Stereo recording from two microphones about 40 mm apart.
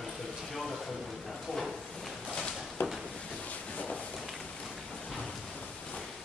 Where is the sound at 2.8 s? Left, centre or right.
Left.